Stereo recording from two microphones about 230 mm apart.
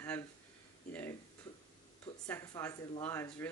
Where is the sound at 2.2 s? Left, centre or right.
Centre.